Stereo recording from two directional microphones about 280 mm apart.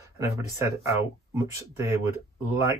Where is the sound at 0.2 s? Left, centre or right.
Centre.